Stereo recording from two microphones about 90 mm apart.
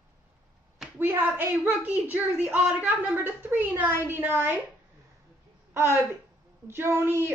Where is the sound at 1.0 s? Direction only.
20° right (ahead or behind).